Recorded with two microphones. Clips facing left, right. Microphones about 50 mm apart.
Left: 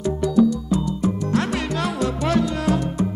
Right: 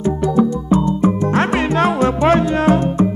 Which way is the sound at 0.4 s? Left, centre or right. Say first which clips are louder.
Right 2 dB; right.